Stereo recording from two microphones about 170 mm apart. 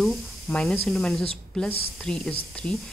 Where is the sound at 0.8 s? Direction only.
Centre (ahead or behind).